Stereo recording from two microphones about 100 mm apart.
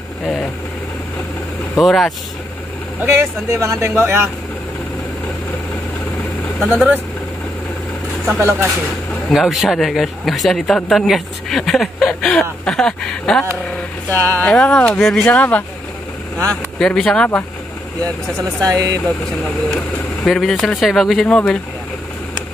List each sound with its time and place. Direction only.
1.8 s speech: centre (ahead or behind)
3.0 s speech: 25° right (ahead or behind)
6.6 s speech: 5° left (ahead or behind)
8.4 s speech: 25° right (ahead or behind)
9.3 s speech: centre (ahead or behind)
14.1 s speech: 30° right (ahead or behind)
14.4 s speech: 10° left (ahead or behind)
16.8 s speech: 10° left (ahead or behind)
18.6 s speech: 40° right (ahead or behind)
20.2 s speech: 5° left (ahead or behind)